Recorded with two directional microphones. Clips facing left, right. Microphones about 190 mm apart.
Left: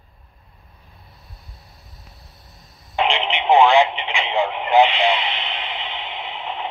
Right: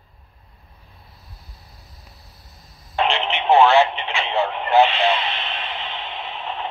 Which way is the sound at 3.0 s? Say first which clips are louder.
Even; 15° left (ahead or behind).